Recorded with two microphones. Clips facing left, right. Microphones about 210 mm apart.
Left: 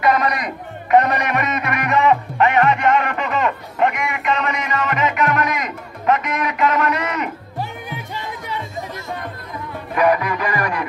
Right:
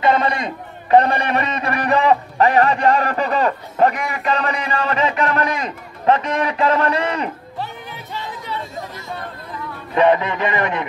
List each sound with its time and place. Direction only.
0.0 s a man's voice: 25° right (ahead or behind)
9.9 s speech: 25° right (ahead or behind)